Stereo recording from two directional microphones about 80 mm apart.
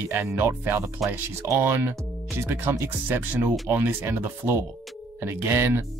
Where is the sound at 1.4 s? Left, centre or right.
Right.